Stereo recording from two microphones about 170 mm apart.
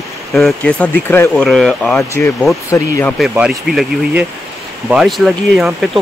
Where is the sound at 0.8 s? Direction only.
10° left (ahead or behind).